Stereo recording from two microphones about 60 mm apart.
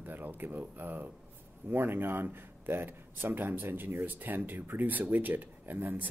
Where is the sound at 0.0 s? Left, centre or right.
Right.